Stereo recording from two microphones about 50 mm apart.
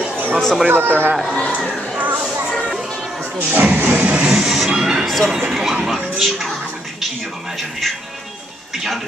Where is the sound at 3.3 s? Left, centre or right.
Right.